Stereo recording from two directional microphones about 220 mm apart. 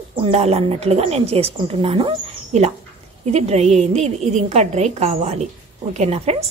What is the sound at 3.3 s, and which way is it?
A woman's voice, 30° right (ahead or behind).